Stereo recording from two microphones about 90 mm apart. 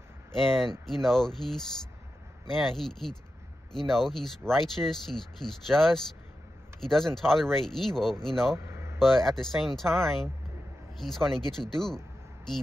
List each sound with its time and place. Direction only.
0.3 s speech: 5° left (ahead or behind)
8.6 s a sound: 30° right (ahead or behind)
9.0 s speech: centre (ahead or behind)